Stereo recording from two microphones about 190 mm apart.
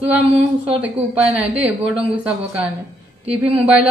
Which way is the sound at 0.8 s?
5° right (ahead or behind).